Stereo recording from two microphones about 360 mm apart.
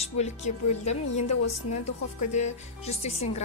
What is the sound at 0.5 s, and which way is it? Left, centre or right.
Speech, centre.